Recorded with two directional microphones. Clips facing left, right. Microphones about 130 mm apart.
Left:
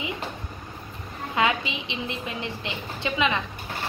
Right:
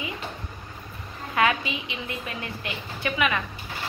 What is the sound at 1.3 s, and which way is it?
A woman's voice, 20° left (ahead or behind).